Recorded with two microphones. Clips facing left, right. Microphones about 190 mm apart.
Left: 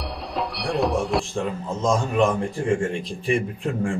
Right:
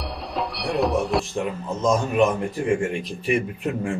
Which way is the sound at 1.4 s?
15° right (ahead or behind).